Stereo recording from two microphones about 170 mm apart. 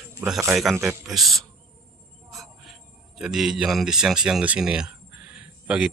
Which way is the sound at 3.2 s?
5° right (ahead or behind).